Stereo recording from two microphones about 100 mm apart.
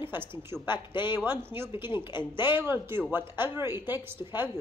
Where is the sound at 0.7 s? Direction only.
50° left (ahead or behind).